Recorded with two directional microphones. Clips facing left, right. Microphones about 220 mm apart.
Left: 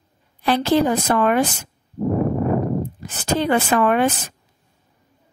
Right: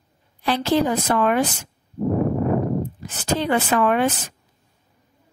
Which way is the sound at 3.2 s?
50° left (ahead or behind).